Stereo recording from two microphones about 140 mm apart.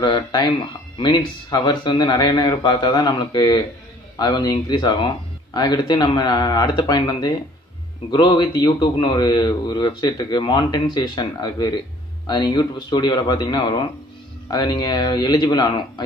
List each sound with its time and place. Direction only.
0.0 s a man's voice: 30° left (ahead or behind)